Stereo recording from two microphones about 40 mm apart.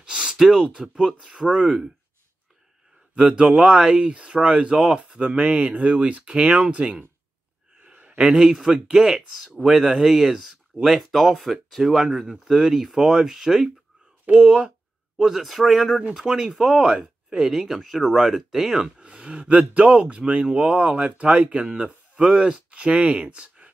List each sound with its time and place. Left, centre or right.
0.0 s gasp: right
0.7 s speech: right
3.2 s speech: right
4.0 s speech: right
5.7 s speech: right
6.2 s speech: right
7.8 s a sound: right
8.4 s speech: centre
11.9 s speech: centre
14.4 s speech: centre
15.4 s speech: centre
18.9 s speech: right